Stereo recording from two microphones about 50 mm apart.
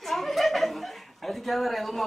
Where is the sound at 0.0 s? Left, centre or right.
Centre.